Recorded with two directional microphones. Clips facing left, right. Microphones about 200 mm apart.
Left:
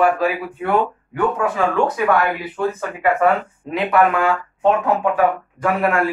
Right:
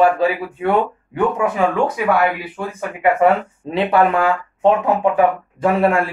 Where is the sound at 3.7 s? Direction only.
30° right (ahead or behind).